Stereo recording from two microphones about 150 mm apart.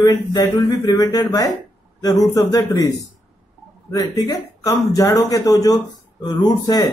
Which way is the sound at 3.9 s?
25° left (ahead or behind).